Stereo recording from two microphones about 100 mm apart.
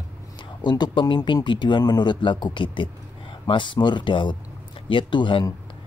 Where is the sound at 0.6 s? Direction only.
45° left (ahead or behind).